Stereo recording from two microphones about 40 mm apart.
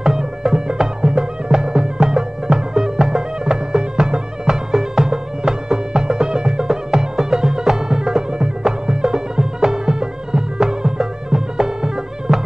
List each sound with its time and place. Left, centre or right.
0.0 s music: centre